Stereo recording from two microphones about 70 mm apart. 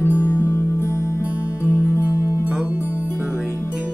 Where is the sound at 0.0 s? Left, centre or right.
Left.